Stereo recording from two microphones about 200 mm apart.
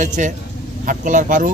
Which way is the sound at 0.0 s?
40° right (ahead or behind).